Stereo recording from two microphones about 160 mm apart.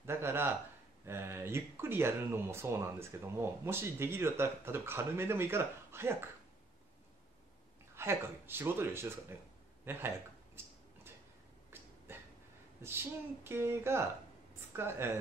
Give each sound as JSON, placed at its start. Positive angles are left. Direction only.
{"t": 0.0, "sound": "speech", "side_deg": -15}
{"t": 7.9, "sound": "speech", "side_deg": -15}
{"t": 12.8, "sound": "speech", "side_deg": -15}